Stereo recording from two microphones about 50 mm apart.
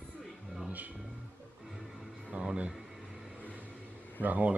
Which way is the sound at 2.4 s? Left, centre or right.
Centre.